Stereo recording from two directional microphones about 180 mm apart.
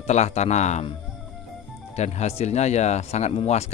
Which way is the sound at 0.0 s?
40° left (ahead or behind).